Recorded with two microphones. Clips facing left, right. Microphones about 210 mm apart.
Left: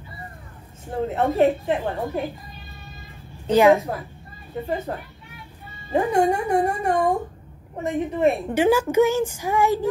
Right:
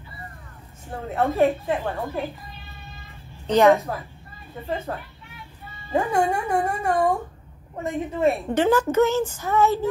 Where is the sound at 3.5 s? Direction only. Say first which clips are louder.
Left 1 dB; 5° left (ahead or behind).